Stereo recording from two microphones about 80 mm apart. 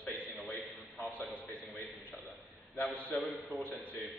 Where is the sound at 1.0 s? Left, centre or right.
Centre.